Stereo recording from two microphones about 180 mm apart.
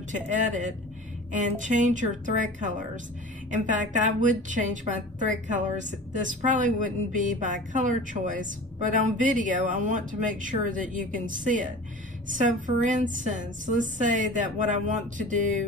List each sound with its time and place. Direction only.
0.1 s a woman's voice: 45° right (ahead or behind)